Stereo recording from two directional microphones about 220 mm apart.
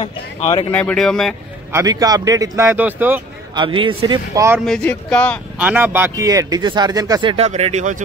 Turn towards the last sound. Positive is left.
turn(degrees=-35)  # may be behind; listen again after turning